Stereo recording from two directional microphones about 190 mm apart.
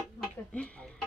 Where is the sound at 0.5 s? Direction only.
5° left (ahead or behind).